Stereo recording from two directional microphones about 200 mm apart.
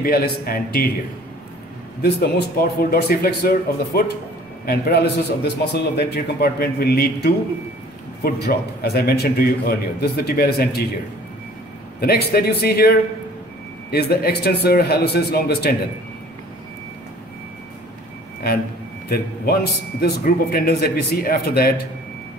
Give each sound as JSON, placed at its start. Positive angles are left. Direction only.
{"t": 0.0, "sound": "a man's voice", "side_deg": 50}
{"t": 2.8, "sound": "a man's voice", "side_deg": 50}
{"t": 12.0, "sound": "a man's voice", "side_deg": 50}
{"t": 18.4, "sound": "a man's voice", "side_deg": 50}